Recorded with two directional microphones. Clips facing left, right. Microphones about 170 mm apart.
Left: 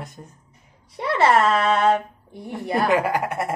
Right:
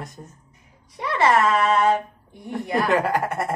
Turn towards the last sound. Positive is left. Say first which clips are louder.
# even
turn(degrees=0)  # may be behind; listen again after turning